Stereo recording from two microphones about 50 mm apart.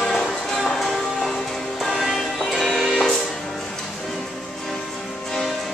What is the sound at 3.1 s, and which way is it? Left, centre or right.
Music, centre.